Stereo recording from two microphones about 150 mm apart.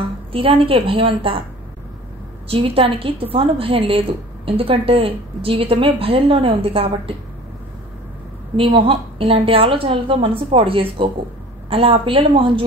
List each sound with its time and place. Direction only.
0.3 s a woman's voice: 40° right (ahead or behind)
2.4 s a woman's voice: 40° right (ahead or behind)
8.5 s a woman's voice: 35° right (ahead or behind)